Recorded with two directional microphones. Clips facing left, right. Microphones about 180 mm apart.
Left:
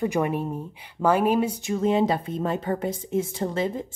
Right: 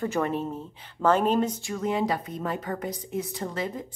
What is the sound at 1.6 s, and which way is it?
A woman's voice, 25° left (ahead or behind).